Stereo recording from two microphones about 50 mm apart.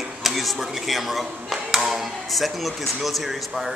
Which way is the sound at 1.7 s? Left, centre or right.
Centre.